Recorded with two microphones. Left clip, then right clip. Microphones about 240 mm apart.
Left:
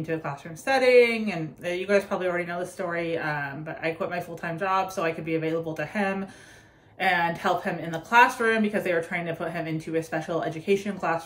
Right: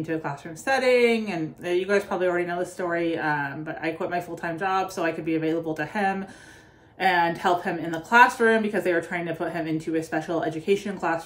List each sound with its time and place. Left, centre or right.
0.0 s speech: centre